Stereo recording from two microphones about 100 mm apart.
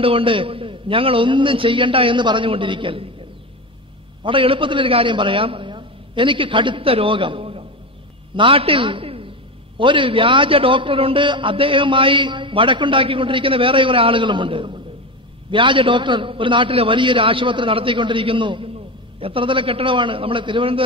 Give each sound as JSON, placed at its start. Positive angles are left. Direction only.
{"t": 0.0, "sound": "a man's voice", "side_deg": -65}
{"t": 4.2, "sound": "a man's voice", "side_deg": -60}